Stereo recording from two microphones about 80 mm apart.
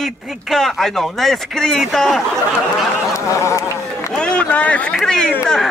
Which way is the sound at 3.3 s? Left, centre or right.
Left.